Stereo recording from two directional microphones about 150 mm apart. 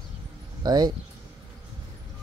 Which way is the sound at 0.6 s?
30° right (ahead or behind).